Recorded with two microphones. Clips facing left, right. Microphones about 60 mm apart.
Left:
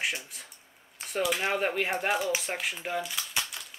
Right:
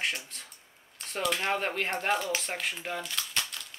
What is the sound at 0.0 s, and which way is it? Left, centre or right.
Speech, centre.